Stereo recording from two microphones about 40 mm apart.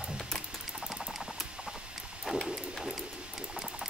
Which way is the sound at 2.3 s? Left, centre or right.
Centre.